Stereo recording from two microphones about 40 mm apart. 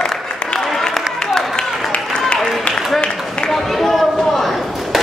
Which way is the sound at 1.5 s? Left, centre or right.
Left.